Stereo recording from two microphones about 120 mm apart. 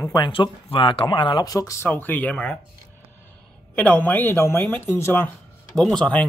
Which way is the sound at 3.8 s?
10° left (ahead or behind).